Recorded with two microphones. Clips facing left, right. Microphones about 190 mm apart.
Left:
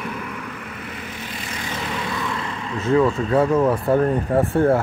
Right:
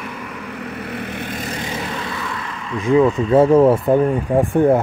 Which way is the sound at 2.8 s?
15° right (ahead or behind).